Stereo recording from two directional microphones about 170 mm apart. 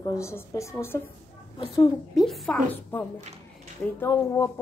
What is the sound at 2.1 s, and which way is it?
A woman's voice, centre (ahead or behind).